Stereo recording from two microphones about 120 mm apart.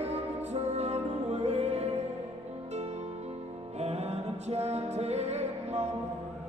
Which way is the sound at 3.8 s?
65° right (ahead or behind).